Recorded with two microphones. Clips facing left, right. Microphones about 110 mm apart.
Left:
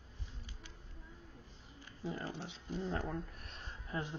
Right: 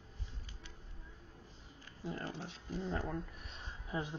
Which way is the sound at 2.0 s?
5° left (ahead or behind).